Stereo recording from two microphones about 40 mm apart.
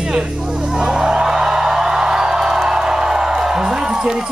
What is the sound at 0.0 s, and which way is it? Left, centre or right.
Music, centre.